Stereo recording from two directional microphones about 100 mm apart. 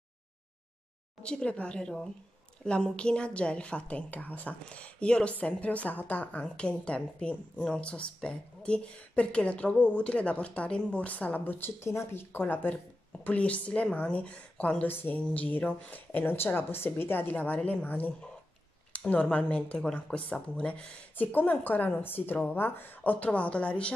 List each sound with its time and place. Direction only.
1.2 s a woman's voice: 10° left (ahead or behind)